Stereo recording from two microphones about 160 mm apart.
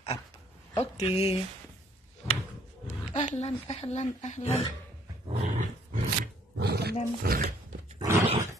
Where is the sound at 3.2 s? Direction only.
40° left (ahead or behind).